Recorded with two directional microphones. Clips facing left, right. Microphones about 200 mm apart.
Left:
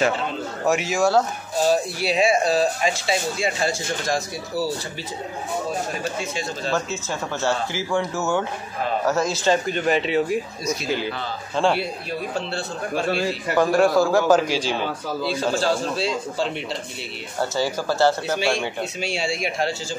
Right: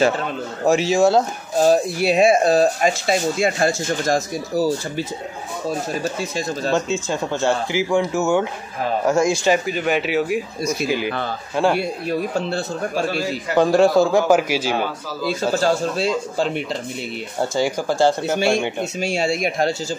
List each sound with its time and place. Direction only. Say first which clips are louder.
0.7 s a man's voice: right 5 dB; 30° right (ahead or behind)
1.6 s speech: right 5 dB; 50° right (ahead or behind)
6.7 s speech: right 5 dB; 15° right (ahead or behind)
11.6 s speech: right 2 dB; 10° right (ahead or behind)
12.4 s speech: right 5 dB; 45° right (ahead or behind)
13.6 s a man's voice: right 3 dB; 25° right (ahead or behind)
14.3 s speech: right 1 dB; 10° right (ahead or behind)
14.8 s speech: right 1 dB; 45° right (ahead or behind)
17.4 s speech: right 3 dB; 15° right (ahead or behind)
18.9 s speech: right 7 dB; 45° right (ahead or behind)